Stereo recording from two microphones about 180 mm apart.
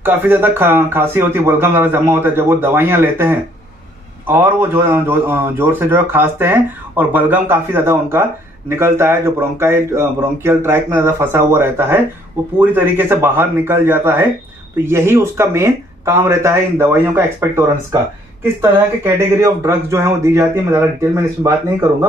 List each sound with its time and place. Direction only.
0.0 s a man's voice: 10° right (ahead or behind)